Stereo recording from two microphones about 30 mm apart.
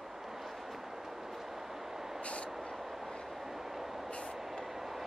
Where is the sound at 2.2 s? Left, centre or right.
Left.